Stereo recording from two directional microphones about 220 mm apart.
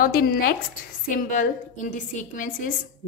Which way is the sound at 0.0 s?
40° left (ahead or behind).